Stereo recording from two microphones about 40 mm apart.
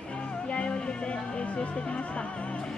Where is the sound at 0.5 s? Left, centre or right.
Left.